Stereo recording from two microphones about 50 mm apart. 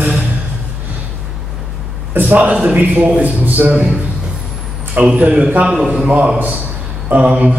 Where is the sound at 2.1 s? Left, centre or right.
Right.